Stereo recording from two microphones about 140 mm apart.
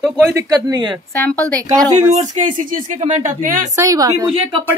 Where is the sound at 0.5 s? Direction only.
25° right (ahead or behind).